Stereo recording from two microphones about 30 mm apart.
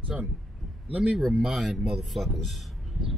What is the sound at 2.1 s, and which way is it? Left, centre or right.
Speech, centre.